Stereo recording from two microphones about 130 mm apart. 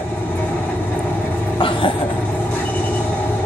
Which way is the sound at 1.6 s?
40° left (ahead or behind).